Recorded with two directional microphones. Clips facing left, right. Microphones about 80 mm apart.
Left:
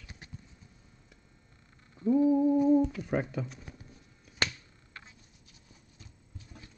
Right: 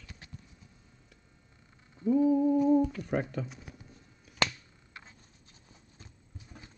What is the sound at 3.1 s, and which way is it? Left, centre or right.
Speech, centre.